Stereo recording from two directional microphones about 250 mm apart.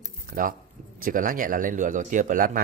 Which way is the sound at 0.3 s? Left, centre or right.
Right.